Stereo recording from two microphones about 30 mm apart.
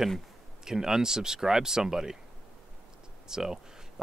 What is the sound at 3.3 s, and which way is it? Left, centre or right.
Speech, centre.